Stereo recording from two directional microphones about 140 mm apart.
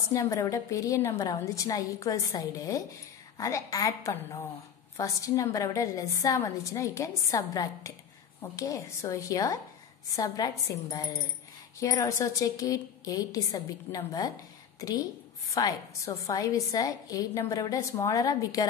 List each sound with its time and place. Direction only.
0.1 s a woman's voice: 25° left (ahead or behind)